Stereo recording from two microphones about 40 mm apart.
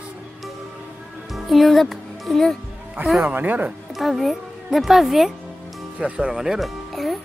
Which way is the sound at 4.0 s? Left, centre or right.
Centre.